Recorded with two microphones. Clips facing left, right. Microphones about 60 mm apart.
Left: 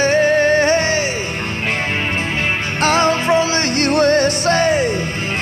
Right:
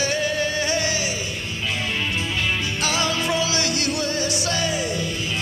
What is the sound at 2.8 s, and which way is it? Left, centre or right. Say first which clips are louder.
Music: left 10 dB; left.